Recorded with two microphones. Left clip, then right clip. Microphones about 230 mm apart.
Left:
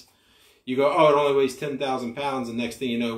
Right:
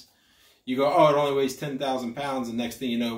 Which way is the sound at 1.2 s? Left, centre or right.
Right.